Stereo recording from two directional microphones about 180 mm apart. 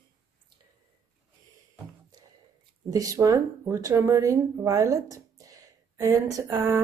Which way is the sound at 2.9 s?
20° right (ahead or behind).